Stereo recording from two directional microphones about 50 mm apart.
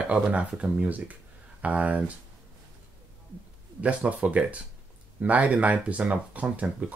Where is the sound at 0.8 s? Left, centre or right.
Right.